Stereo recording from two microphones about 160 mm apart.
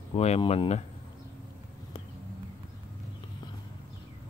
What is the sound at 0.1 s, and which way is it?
Speech, 40° left (ahead or behind).